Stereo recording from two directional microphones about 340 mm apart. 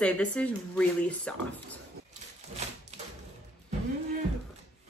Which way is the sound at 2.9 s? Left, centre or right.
Centre.